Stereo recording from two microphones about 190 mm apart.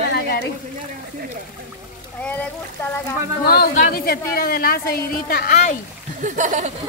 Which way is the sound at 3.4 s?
55° left (ahead or behind).